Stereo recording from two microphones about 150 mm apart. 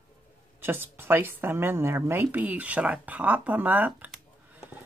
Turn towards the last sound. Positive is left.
turn(degrees=-10)  # may be behind; listen again after turning